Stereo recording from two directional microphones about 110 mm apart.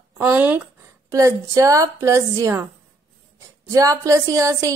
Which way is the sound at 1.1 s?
30° right (ahead or behind).